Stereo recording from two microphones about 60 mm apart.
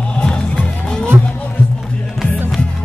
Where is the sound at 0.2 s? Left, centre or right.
Centre.